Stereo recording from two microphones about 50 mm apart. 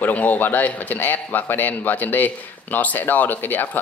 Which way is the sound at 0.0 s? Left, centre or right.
Left.